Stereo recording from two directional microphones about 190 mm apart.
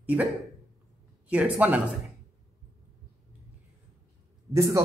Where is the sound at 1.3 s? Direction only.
10° right (ahead or behind).